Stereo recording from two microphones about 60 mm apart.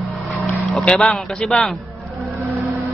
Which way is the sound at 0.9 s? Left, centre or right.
Centre.